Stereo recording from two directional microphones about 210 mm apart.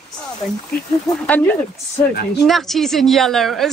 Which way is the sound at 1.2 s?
5° left (ahead or behind).